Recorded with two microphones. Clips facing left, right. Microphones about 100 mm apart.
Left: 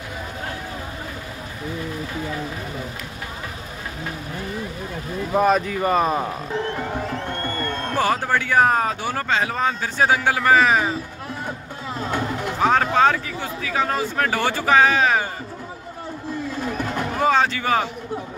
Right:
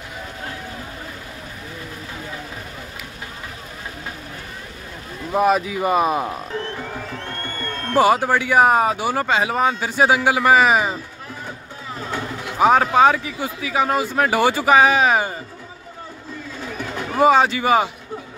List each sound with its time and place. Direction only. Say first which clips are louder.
5.3 s speech: right 1 dB; 5° right (ahead or behind)
7.2 s music: left 3 dB; 10° left (ahead or behind)
7.9 s speech: right 6 dB; 10° right (ahead or behind)
12.5 s speech: right 4 dB; 10° right (ahead or behind)
16.7 s a sound: right 1 dB; 50° left (ahead or behind)
17.2 s speech: right 5 dB; 15° right (ahead or behind)